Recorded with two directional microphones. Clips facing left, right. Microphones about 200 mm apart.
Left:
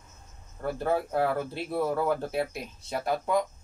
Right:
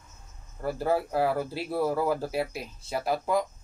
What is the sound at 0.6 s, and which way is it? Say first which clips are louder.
Speech: right 1 dB; 5° right (ahead or behind).